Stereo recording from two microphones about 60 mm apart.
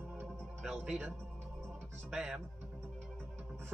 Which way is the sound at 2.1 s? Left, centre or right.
Centre.